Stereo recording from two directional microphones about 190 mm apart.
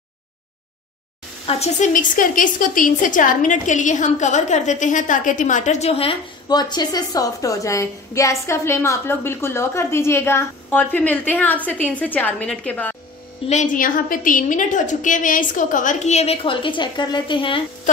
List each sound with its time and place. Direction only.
1.5 s a woman's voice: 35° left (ahead or behind); by 12.9 s 10° left (ahead or behind)
13.5 s a woman's voice: 40° left (ahead or behind)